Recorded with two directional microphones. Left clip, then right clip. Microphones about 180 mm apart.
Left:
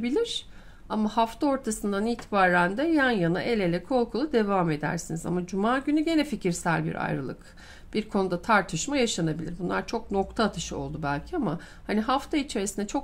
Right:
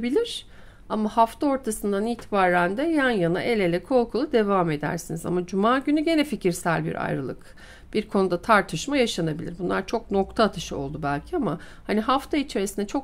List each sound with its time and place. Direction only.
0.0 s a woman's voice: 25° right (ahead or behind)